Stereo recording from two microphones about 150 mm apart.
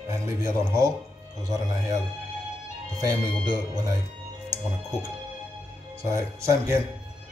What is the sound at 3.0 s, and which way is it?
Speech, 25° right (ahead or behind).